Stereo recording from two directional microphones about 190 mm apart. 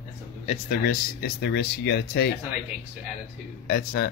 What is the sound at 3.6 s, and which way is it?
Speech, 50° left (ahead or behind).